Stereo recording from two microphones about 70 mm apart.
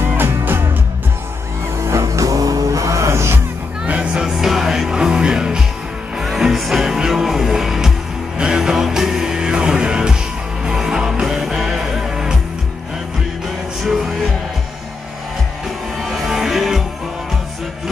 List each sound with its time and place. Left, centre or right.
0.0 s music: right
1.8 s music: right
3.8 s music: centre
16.0 s music: centre